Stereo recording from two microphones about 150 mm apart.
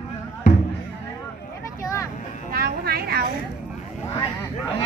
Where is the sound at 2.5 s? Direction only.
90° right.